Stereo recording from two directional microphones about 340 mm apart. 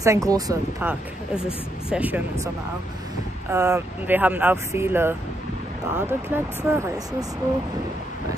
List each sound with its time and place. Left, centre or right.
0.0 s speech: centre
3.5 s speech: centre